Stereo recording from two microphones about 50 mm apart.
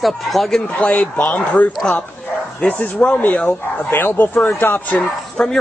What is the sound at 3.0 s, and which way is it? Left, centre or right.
Speech, centre.